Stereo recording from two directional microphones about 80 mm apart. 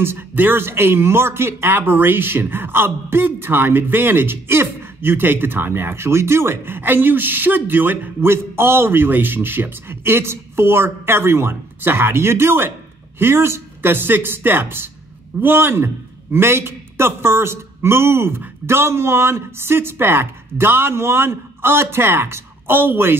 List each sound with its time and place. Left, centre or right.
0.3 s a man's voice: right